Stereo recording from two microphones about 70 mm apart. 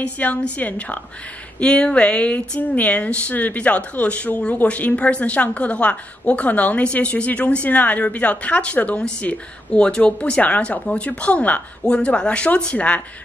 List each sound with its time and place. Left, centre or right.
0.0 s a woman's voice: centre